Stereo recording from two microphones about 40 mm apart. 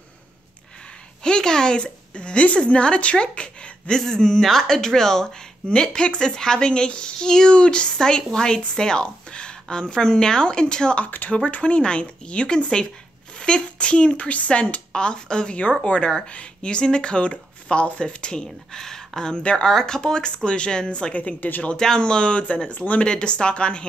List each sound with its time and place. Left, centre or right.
1.2 s speech: centre
3.9 s speech: centre
5.7 s speech: left
11.1 s speech: left
11.3 s speech: left
19.4 s speech: left
19.7 s speech: centre
21.1 s speech: left
21.7 s speech: centre; by 23.0 s left
23.0 s speech: left